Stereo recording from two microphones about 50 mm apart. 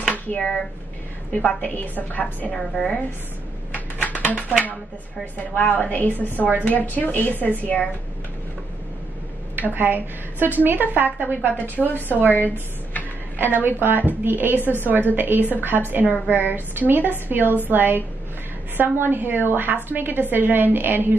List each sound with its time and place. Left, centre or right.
0.1 s a sound: left
1.6 s a woman's voice: left
2.5 s speech: centre
3.7 s a sound: left
5.2 s a woman's voice: left
9.8 s a woman's voice: right
12.4 s speech: left
13.4 s a woman's voice: right
14.6 s a woman's voice: left
14.9 s a woman's voice: right